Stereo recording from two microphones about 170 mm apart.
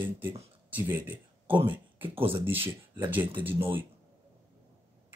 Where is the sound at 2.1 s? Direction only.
30° right (ahead or behind).